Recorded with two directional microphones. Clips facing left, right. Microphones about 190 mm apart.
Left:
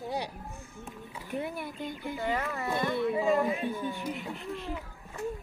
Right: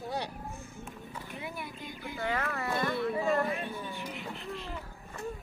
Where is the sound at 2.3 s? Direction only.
20° left (ahead or behind).